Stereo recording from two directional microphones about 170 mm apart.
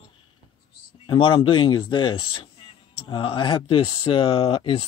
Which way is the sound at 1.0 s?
30° left (ahead or behind).